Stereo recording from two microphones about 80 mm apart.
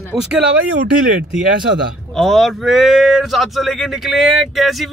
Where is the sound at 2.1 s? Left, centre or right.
Centre.